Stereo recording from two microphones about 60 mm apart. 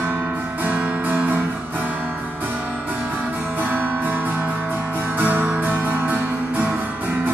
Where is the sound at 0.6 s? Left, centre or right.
Right.